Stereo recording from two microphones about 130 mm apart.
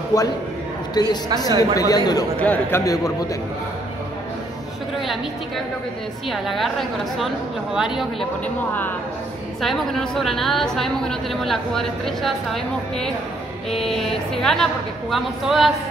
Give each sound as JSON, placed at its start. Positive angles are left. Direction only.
{"t": 0.1, "sound": "speech", "side_deg": 30}
{"t": 2.3, "sound": "a man's voice", "side_deg": 10}
{"t": 2.8, "sound": "speech", "side_deg": 25}
{"t": 6.3, "sound": "a woman's voice", "side_deg": 0}
{"t": 8.5, "sound": "a man's voice", "side_deg": 15}
{"t": 9.6, "sound": "a woman's voice", "side_deg": 0}
{"t": 13.7, "sound": "a woman's voice", "side_deg": 0}